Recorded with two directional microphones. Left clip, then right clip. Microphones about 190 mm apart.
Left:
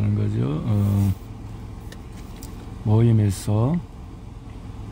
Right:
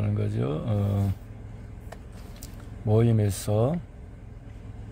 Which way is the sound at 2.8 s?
15° right (ahead or behind).